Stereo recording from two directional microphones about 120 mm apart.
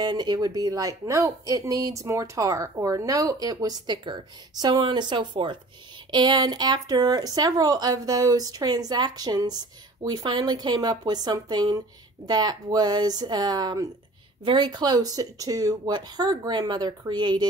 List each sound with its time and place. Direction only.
0.0 s a woman's voice: 35° right (ahead or behind)